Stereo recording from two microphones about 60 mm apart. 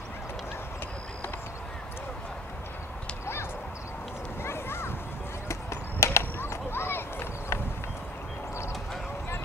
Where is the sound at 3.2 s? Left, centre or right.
Left.